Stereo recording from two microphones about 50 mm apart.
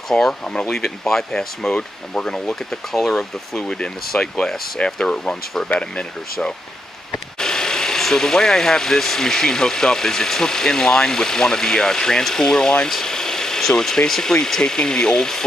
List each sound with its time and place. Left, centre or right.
0.1 s speech: centre
7.3 s speech: centre